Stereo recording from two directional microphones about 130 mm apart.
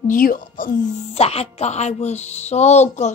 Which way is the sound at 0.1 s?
90° left.